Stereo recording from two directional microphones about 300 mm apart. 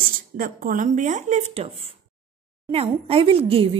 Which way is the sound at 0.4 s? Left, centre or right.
Right.